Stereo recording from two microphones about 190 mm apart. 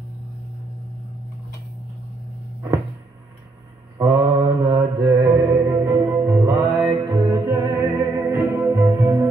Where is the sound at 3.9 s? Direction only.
25° right (ahead or behind).